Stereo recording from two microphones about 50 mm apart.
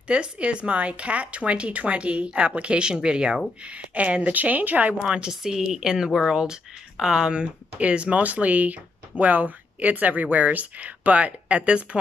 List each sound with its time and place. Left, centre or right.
0.1 s speech: right
5.1 s speech: centre